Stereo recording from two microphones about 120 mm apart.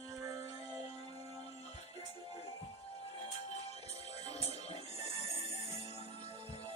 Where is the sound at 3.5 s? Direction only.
60° left (ahead or behind).